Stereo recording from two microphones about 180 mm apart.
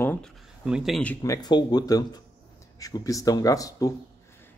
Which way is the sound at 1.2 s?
20° left (ahead or behind).